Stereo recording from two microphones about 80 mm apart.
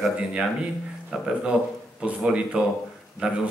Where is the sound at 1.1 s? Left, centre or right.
Centre.